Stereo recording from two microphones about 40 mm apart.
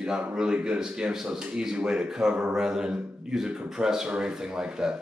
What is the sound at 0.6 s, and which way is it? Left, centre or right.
Speech, right.